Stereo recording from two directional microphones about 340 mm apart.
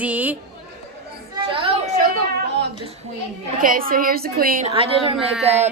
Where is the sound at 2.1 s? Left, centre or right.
Right.